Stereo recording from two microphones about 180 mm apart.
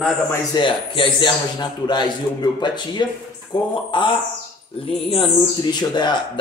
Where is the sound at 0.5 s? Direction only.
25° left (ahead or behind).